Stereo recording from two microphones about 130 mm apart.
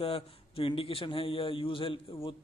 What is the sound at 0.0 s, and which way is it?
A man's voice, 45° left (ahead or behind).